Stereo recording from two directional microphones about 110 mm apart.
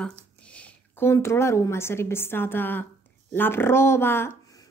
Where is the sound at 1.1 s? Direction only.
25° left (ahead or behind).